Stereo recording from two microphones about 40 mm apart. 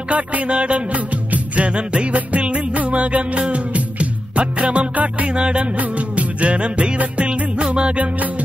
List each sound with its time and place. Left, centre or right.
0.1 s music: right
0.5 s music: right